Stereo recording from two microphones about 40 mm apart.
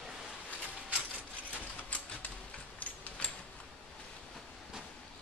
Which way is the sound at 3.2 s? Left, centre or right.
Left.